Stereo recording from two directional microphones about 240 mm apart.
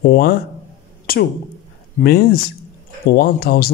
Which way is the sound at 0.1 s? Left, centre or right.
Left.